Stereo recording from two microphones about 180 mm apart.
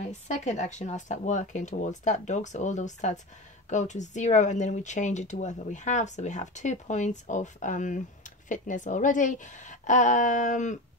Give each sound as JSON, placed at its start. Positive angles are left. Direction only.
{"t": 0.0, "sound": "speech", "side_deg": 40}